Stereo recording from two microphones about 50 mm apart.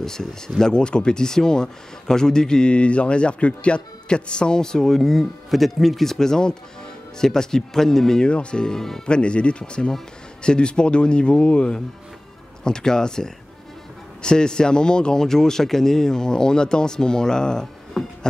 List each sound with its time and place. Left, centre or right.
0.0 s speech: centre
8.3 s speech: left
9.0 s speech: left